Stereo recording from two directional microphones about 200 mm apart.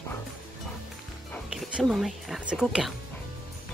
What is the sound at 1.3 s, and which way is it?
Speech, centre (ahead or behind).